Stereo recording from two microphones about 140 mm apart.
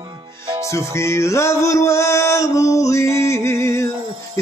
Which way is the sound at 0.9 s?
20° left (ahead or behind).